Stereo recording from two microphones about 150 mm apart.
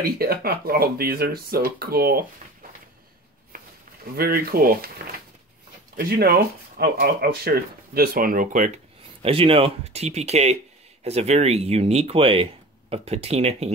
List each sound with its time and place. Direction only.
0.0 s speech: 85° right
3.5 s a sound: 70° right (ahead or behind)
4.1 s speech: 85° right; by 8.8 s 55° right (ahead or behind)
9.2 s speech: 40° right (ahead or behind)